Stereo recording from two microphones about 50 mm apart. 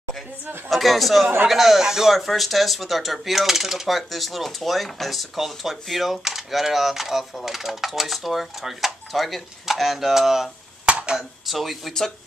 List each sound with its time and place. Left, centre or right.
0.7 s speech: centre
10.9 s a sound: right
11.1 s speech: centre